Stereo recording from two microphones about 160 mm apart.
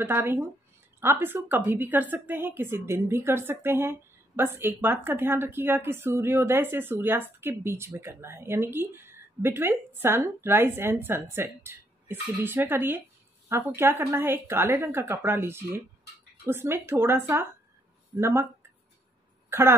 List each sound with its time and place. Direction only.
0.0 s speech: 15° right (ahead or behind)